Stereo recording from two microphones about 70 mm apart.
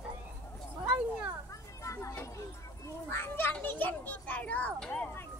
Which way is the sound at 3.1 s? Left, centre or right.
Left.